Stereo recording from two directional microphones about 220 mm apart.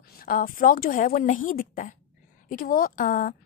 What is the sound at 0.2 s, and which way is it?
Speech, 40° left (ahead or behind).